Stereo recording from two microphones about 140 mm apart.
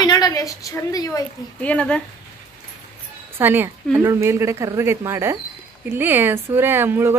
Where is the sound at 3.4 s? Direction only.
15° right (ahead or behind).